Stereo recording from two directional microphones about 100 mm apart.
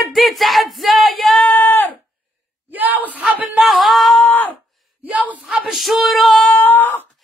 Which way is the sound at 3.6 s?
Centre (ahead or behind).